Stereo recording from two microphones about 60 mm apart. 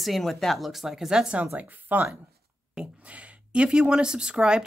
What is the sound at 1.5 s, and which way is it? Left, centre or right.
A woman's voice, right.